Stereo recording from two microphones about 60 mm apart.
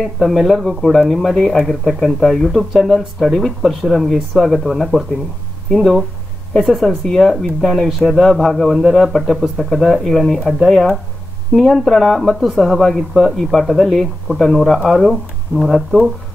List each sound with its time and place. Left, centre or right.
0.0 s speech: centre